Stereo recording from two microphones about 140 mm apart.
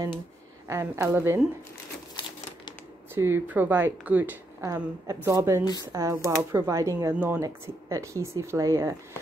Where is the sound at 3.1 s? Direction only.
15° right (ahead or behind).